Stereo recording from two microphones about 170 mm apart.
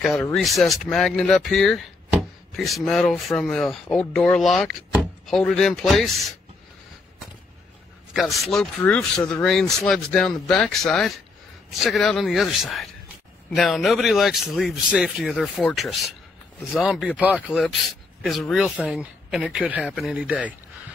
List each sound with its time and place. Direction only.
0.3 s speech: centre (ahead or behind)
8.1 s speech: centre (ahead or behind)